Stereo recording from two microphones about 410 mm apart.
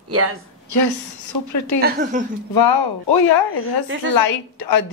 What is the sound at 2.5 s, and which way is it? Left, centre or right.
Speech, left.